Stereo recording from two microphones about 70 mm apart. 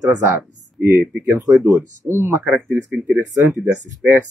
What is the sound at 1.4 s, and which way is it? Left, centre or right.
Speech, right.